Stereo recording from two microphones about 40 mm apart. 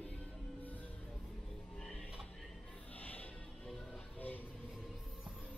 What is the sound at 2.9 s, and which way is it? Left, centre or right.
Music, left.